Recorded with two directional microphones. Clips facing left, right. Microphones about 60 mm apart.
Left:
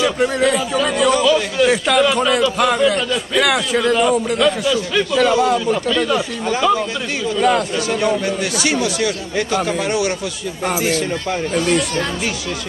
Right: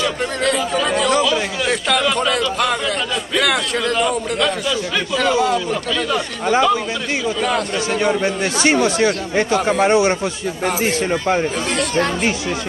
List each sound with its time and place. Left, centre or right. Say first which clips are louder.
0.0 s a man's voice: left 4 dB; centre
7.3 s a man's voice: left 8 dB; centre
8.0 s speech: right 2 dB; right